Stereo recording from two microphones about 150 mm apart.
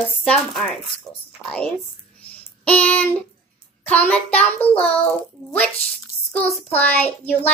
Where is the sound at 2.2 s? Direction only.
10° left (ahead or behind).